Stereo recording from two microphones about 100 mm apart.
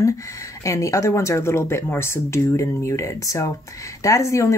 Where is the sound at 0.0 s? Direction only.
30° left (ahead or behind).